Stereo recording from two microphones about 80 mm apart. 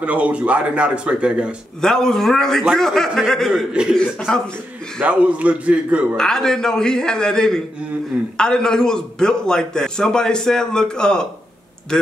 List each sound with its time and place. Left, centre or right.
0.0 s speech: centre
1.8 s a man's voice: centre
5.0 s speech: centre
6.1 s a man's voice: centre